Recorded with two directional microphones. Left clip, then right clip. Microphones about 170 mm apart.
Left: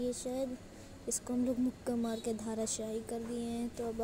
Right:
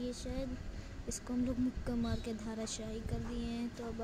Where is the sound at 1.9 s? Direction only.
15° left (ahead or behind).